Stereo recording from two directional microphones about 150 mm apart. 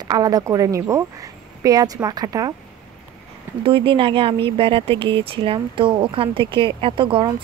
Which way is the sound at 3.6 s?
35° right (ahead or behind).